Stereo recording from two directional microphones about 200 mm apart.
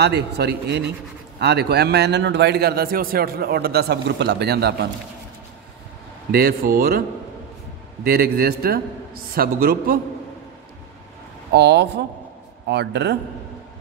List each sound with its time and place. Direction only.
0.0 s a man's voice: 55° right (ahead or behind)
6.3 s a man's voice: 50° right (ahead or behind)
8.0 s a man's voice: 50° right (ahead or behind)
11.5 s a man's voice: 60° right (ahead or behind)